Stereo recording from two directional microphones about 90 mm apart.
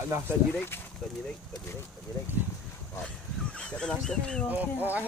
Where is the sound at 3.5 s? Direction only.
10° left (ahead or behind).